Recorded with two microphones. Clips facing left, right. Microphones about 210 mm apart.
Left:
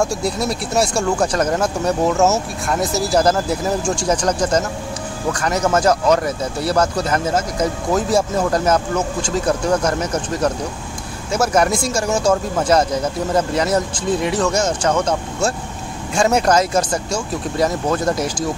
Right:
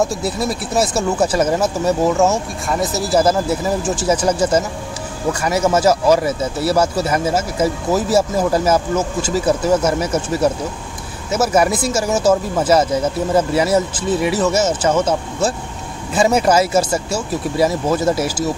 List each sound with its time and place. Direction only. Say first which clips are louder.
0.0 s speech: right 1 dB; centre (ahead or behind)